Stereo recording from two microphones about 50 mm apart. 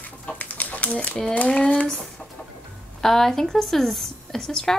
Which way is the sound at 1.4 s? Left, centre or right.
Centre.